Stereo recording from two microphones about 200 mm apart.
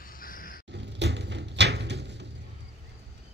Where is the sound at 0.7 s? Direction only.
60° right (ahead or behind).